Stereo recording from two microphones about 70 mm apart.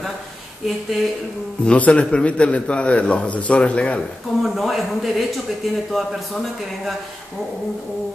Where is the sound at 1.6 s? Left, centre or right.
Centre.